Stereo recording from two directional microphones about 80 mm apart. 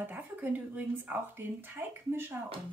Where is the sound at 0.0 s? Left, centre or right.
Right.